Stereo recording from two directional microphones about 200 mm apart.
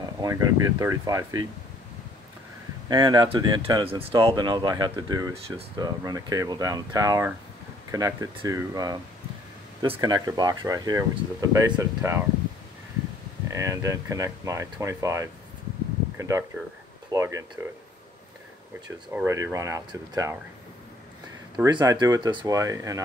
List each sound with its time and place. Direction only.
0.2 s speech: 15° right (ahead or behind)
2.9 s speech: 20° right (ahead or behind)
13.5 s speech: 15° right (ahead or behind)
19.1 s speech: 15° right (ahead or behind)
21.6 s speech: 20° right (ahead or behind)